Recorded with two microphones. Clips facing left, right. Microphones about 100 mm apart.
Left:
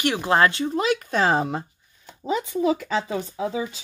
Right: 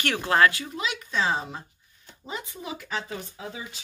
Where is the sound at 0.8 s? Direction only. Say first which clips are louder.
Left 8 dB; 50° left (ahead or behind).